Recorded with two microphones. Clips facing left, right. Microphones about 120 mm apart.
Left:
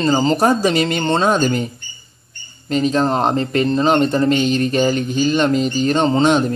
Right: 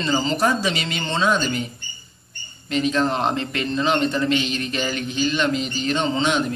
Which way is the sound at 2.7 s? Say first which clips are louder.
Left 4 dB; 40° left (ahead or behind).